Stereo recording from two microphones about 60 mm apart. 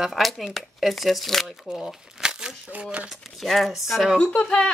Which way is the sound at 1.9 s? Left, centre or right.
Centre.